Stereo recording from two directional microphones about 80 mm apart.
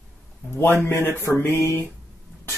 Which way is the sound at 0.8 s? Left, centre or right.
Left.